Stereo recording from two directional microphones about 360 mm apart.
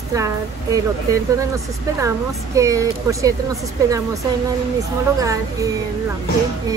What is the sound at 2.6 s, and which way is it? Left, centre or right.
Speech, centre.